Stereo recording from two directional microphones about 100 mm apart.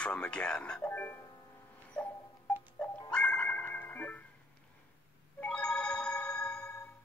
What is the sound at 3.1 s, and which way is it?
Music, 10° left (ahead or behind).